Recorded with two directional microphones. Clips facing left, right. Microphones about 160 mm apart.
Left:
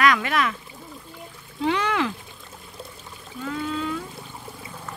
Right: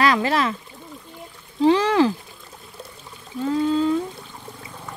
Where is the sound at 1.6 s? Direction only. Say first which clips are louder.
Right 7 dB; 30° right (ahead or behind).